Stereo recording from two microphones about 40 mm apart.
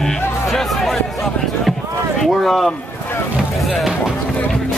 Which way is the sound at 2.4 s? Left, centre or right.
Centre.